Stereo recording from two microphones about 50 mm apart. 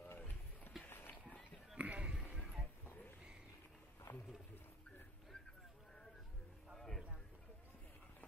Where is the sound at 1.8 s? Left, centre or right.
Right.